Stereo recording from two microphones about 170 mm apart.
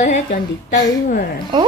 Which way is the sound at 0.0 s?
45° left (ahead or behind).